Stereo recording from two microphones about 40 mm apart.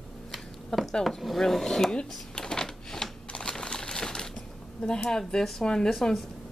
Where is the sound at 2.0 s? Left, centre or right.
Left.